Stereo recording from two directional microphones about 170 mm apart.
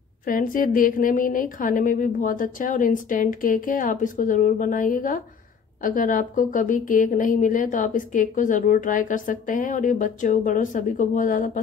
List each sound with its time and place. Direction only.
0.2 s speech: 55° left (ahead or behind)